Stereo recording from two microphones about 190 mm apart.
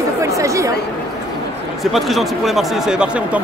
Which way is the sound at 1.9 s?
Centre (ahead or behind).